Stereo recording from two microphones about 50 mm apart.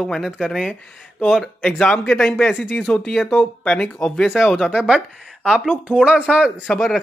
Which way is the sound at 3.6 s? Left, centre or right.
Left.